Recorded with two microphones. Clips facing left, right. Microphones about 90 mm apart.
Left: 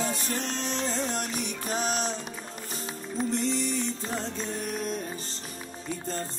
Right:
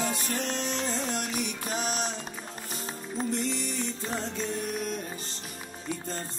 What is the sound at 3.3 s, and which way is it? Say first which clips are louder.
Music: left 3 dB; 35° left (ahead or behind).